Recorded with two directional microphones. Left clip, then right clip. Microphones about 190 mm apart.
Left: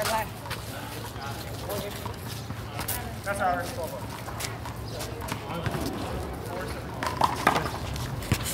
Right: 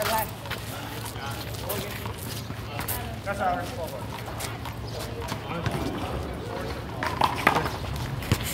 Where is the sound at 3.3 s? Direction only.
45° left (ahead or behind).